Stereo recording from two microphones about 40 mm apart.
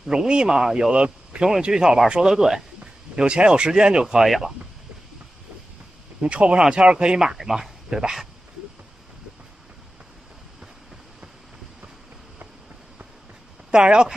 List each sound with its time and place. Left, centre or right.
0.0 s speech: centre
2.3 s speech: centre
2.8 s speech: right; by 4.6 s centre
6.2 s speech: right
7.3 s speech: centre
13.7 s speech: right